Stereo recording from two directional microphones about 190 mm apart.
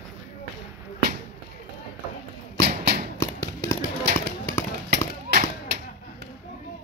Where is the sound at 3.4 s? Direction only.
20° left (ahead or behind).